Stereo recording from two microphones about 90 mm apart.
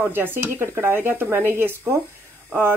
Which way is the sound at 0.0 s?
25° right (ahead or behind).